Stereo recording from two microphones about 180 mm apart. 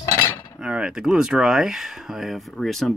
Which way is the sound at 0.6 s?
5° right (ahead or behind).